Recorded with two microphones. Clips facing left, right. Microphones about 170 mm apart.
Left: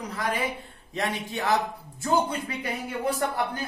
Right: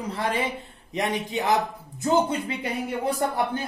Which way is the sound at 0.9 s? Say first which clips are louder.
Right 3 dB; 15° right (ahead or behind).